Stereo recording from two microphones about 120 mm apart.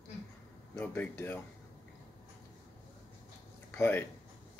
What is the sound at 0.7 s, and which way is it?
Speech, 15° left (ahead or behind).